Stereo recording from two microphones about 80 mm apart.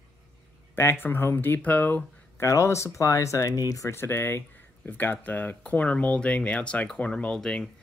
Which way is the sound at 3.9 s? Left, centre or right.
Left.